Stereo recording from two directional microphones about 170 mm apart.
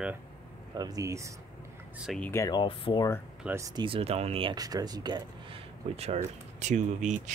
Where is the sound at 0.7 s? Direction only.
20° right (ahead or behind).